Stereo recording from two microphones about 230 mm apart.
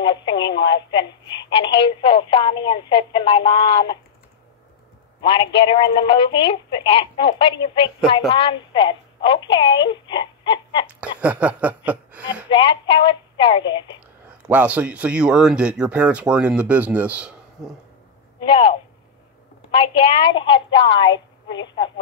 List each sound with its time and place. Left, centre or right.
0.1 s radio: centre
0.9 s a woman's voice: centre
5.2 s a woman's voice: left
10.9 s speech: centre
12.4 s a woman's voice: left
14.4 s speech: centre
19.7 s a woman's voice: left